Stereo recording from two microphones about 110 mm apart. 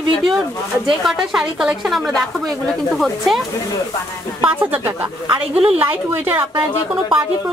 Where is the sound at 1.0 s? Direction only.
5° right (ahead or behind).